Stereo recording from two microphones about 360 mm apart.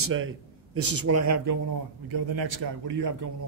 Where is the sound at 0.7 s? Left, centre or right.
Right.